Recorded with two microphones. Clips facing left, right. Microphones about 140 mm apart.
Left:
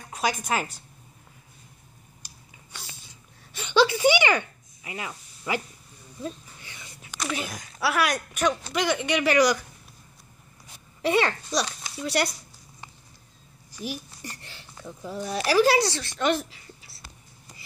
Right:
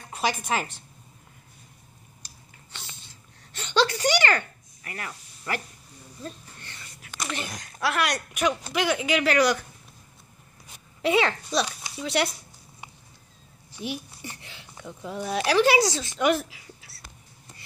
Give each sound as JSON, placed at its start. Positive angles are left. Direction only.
{"t": 0.1, "sound": "a woman's voice", "side_deg": 0}
{"t": 2.2, "sound": "a sound", "side_deg": 10}
{"t": 3.5, "sound": "speech", "side_deg": 10}
{"t": 6.2, "sound": "a sound", "side_deg": 10}
{"t": 7.2, "sound": "speech", "side_deg": 0}
{"t": 11.0, "sound": "speech", "side_deg": 0}
{"t": 14.2, "sound": "a sound", "side_deg": 0}
{"t": 15.1, "sound": "speech", "side_deg": 0}
{"t": 15.8, "sound": "speech", "side_deg": -15}